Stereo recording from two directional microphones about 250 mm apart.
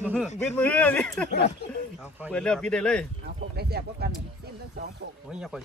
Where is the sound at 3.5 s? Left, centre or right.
Right.